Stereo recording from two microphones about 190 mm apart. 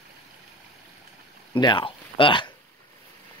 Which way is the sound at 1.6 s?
25° left (ahead or behind).